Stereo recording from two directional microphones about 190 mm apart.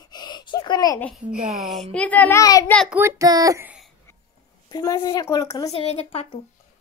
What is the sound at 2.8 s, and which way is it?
A child's voice, 10° right (ahead or behind).